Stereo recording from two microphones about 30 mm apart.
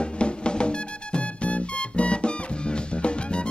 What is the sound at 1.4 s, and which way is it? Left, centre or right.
Music, left.